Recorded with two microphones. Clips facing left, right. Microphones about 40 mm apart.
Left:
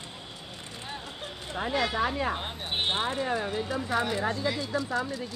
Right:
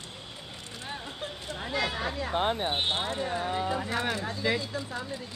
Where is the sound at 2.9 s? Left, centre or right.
Left.